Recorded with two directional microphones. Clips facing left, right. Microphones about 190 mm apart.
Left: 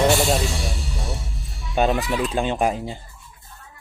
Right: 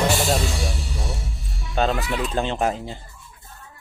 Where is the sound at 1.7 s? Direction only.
20° left (ahead or behind).